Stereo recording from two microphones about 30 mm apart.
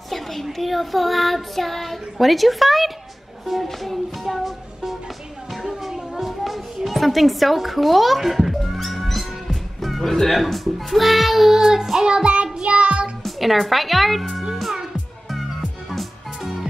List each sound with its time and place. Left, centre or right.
0.1 s speech: centre
5.7 s children playing: centre
6.9 s music: centre
10.3 s speech: centre
12.1 s music: right
12.6 s child singing: right
13.2 s speech: centre